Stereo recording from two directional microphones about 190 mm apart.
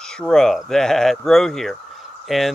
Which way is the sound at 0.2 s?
5° left (ahead or behind).